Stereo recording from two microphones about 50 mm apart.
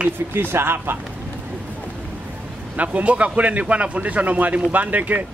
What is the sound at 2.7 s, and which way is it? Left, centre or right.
A man's voice, right.